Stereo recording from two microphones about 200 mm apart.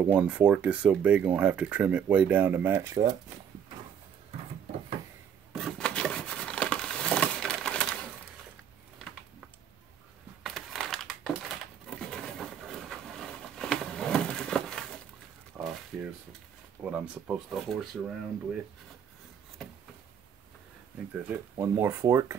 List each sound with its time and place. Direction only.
0.0 s speech: 5° right (ahead or behind)
5.5 s a sound: centre (ahead or behind)
10.4 s crushing: centre (ahead or behind)
12.0 s patter: 5° left (ahead or behind)
15.5 s a sound: 5° right (ahead or behind)
16.8 s speech: 5° right (ahead or behind)
21.2 s speech: 10° right (ahead or behind)